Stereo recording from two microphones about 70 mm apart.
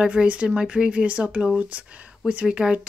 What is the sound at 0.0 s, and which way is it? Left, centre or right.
Speech, centre.